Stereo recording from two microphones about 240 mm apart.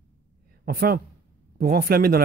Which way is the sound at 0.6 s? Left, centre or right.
Right.